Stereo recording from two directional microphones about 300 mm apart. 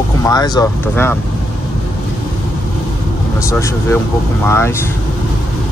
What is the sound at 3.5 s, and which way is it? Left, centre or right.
Speech, centre.